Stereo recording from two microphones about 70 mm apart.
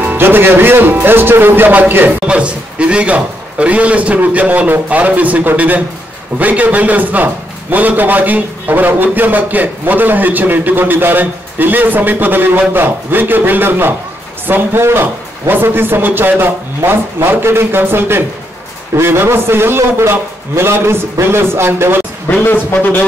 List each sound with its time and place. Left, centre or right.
0.0 s a man's voice: right
2.2 s a man's voice: centre; by 22.0 s right
22.4 s a man's voice: left